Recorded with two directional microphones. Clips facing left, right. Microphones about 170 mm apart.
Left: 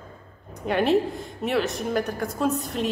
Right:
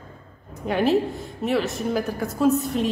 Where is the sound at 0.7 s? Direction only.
Centre (ahead or behind).